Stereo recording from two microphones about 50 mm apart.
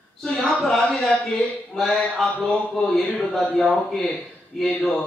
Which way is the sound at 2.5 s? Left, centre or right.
Centre.